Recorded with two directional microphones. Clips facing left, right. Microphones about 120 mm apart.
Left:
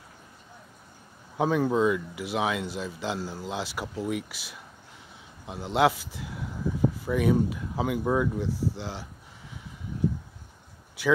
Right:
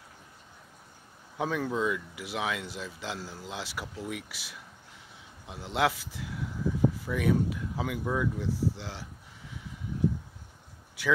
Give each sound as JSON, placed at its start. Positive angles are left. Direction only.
{"t": 1.4, "sound": "speech", "side_deg": 20}
{"t": 7.1, "sound": "speech", "side_deg": 20}